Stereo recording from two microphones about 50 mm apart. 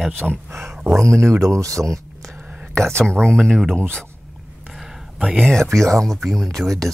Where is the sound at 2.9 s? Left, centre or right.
Centre.